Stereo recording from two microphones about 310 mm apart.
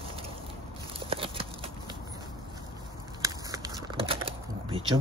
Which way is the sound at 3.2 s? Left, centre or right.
Centre.